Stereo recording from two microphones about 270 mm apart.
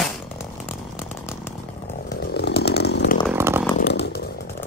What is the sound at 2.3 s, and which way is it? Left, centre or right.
Chainsaw, left.